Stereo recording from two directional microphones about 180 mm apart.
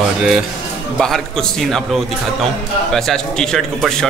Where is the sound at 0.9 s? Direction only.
5° left (ahead or behind).